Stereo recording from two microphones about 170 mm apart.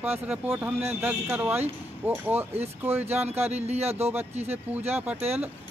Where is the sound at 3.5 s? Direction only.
40° right (ahead or behind).